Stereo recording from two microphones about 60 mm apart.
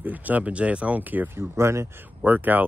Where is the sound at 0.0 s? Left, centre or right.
Right.